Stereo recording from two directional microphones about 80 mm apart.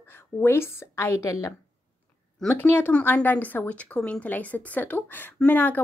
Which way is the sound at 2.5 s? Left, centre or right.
Left.